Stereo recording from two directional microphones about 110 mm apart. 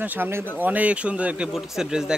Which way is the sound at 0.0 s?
15° right (ahead or behind).